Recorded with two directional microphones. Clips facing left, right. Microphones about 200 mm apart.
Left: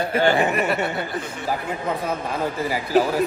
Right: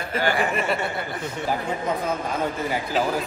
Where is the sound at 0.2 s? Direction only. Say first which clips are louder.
Left 4 dB; 25° left (ahead or behind).